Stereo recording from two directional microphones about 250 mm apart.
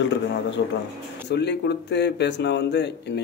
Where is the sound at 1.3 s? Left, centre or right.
Left.